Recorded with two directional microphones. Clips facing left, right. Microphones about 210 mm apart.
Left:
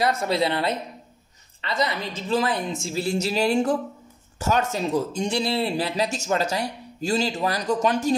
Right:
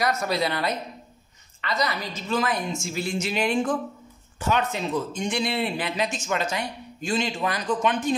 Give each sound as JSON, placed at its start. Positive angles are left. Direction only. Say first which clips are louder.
{"t": 0.0, "sound": "speech", "louder": "left 2 dB", "side_deg": 30}